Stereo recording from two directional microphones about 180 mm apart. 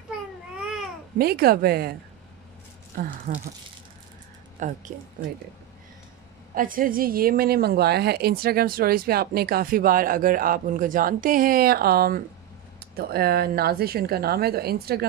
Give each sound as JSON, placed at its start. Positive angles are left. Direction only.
{"t": 1.1, "sound": "a woman's voice", "side_deg": -60}
{"t": 4.6, "sound": "a woman's voice", "side_deg": -45}
{"t": 6.5, "sound": "a woman's voice", "side_deg": -50}